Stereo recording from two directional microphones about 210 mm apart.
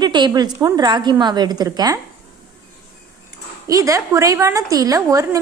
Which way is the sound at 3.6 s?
15° right (ahead or behind).